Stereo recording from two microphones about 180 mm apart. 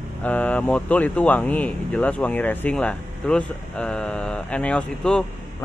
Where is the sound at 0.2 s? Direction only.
10° left (ahead or behind).